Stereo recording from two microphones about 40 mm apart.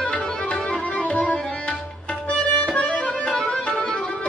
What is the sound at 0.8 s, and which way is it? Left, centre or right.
Tabla, left.